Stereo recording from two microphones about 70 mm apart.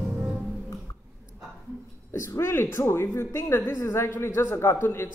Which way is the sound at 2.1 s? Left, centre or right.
Left.